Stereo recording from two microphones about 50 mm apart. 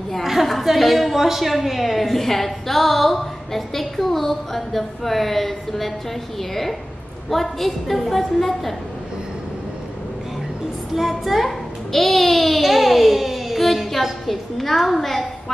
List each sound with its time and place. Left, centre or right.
0.1 s a woman's voice: centre
7.2 s a woman's voice: centre
11.0 s a child's voice: centre